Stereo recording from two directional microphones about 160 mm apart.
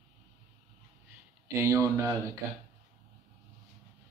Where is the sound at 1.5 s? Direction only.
20° right (ahead or behind).